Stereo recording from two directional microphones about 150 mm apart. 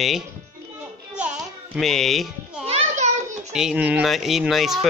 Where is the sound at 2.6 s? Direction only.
50° right (ahead or behind).